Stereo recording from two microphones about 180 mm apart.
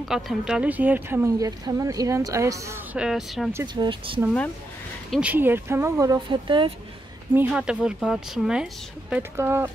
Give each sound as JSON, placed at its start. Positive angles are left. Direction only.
{"t": 0.0, "sound": "speech", "side_deg": 0}
{"t": 3.0, "sound": "speech", "side_deg": 0}
{"t": 3.6, "sound": "speech", "side_deg": -25}
{"t": 5.1, "sound": "speech", "side_deg": -10}
{"t": 7.3, "sound": "speech", "side_deg": -5}
{"t": 9.1, "sound": "speech", "side_deg": -15}